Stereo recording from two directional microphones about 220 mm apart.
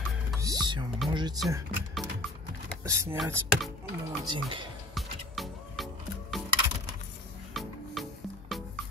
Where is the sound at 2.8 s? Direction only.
10° right (ahead or behind).